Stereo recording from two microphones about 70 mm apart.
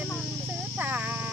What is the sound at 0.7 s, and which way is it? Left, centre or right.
Child singing, right.